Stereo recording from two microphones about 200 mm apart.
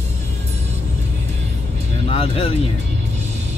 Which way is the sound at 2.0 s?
30° left (ahead or behind).